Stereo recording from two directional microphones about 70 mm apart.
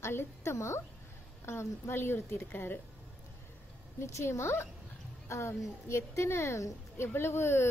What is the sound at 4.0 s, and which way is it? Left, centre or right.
A woman's voice, left.